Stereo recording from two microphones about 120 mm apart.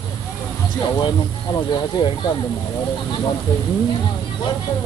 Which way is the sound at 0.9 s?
35° left (ahead or behind).